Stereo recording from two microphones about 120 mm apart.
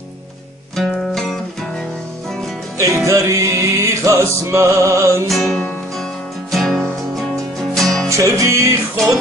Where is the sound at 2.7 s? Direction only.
25° right (ahead or behind).